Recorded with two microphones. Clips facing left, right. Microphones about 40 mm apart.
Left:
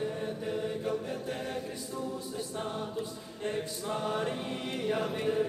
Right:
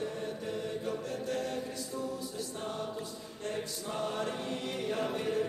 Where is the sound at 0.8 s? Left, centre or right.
Centre.